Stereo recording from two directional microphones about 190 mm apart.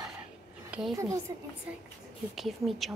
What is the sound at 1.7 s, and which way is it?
A woman's voice, 5° right (ahead or behind).